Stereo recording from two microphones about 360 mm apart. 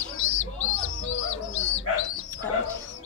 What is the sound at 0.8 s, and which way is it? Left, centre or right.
Bird, left.